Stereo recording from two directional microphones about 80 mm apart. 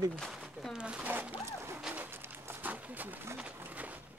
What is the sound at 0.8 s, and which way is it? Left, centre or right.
Zipper, centre.